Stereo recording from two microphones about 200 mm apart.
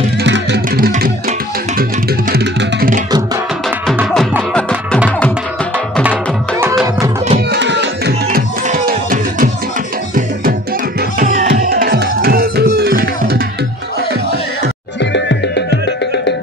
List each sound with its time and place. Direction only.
0.2 s music: 60° right (ahead or behind)
4.1 s music: centre (ahead or behind)
7.3 s music: 60° right (ahead or behind); by 9.5 s 40° right (ahead or behind)
11.0 s music: 45° right (ahead or behind)
15.0 s music: 60° left (ahead or behind)